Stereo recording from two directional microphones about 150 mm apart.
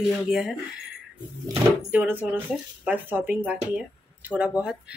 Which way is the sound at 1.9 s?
10° right (ahead or behind).